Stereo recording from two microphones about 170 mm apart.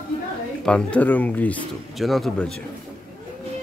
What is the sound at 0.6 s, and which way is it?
Speech, 5° left (ahead or behind).